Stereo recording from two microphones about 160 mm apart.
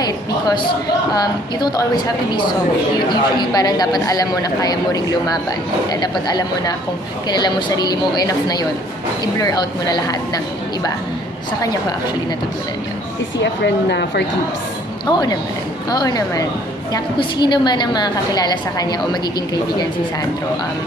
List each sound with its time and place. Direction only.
0.0 s speech: 25° left (ahead or behind)
13.4 s speech: 90° left
15.0 s speech: 25° left (ahead or behind)